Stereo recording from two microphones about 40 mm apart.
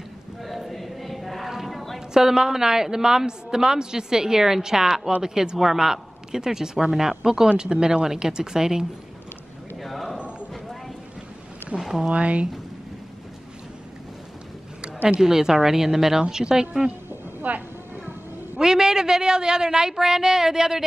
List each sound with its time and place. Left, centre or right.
0.4 s chant: centre
1.5 s a sound: centre
2.1 s a woman's voice: centre
9.8 s a sound: centre
11.7 s speech: right
15.1 s a woman's voice: centre
17.4 s speech: right
18.6 s a woman's voice: centre